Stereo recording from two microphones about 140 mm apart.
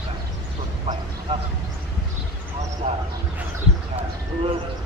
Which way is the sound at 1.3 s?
40° right (ahead or behind).